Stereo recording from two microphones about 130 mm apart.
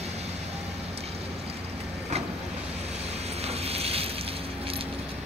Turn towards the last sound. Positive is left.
turn(degrees=-50)  # may be behind; listen again after turning